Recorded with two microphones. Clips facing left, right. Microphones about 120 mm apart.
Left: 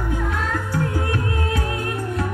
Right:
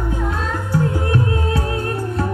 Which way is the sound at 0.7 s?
25° right (ahead or behind).